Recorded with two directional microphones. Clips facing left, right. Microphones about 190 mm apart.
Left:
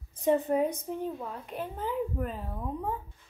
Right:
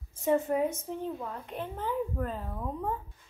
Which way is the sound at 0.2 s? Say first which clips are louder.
Left 1 dB; 20° left (ahead or behind).